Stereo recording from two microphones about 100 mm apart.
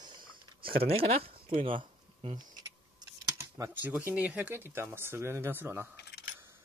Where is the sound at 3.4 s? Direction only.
20° right (ahead or behind).